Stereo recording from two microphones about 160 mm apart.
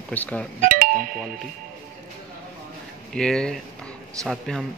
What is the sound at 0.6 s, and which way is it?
Doorbell, 60° right (ahead or behind).